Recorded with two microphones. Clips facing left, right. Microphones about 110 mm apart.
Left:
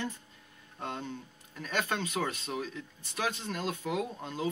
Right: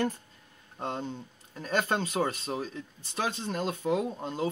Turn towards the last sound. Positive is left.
turn(degrees=-30)  # may be behind; listen again after turning